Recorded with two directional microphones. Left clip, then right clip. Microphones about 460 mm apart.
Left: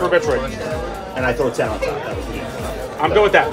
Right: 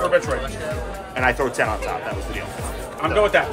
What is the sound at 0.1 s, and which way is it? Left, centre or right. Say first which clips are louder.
Speech: left 2 dB; centre.